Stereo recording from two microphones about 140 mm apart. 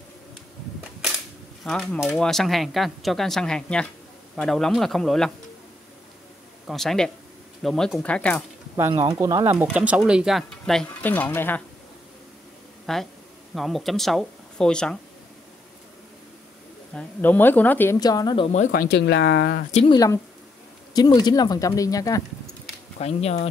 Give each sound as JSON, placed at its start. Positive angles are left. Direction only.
{"t": 1.6, "sound": "speech", "side_deg": 5}
{"t": 6.7, "sound": "speech", "side_deg": 0}
{"t": 8.9, "sound": "speech", "side_deg": -30}
{"t": 9.8, "sound": "speech", "side_deg": -5}
{"t": 11.0, "sound": "speech", "side_deg": 15}
{"t": 12.8, "sound": "speech", "side_deg": 0}
{"t": 16.9, "sound": "speech", "side_deg": 10}
{"t": 17.9, "sound": "speech", "side_deg": 30}
{"t": 18.5, "sound": "speech", "side_deg": 75}
{"t": 19.9, "sound": "speech", "side_deg": 25}
{"t": 22.9, "sound": "speech", "side_deg": 50}